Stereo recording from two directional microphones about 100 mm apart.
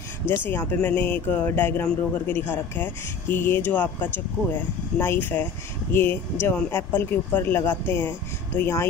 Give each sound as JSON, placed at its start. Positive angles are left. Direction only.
{"t": 0.4, "sound": "speech", "side_deg": 20}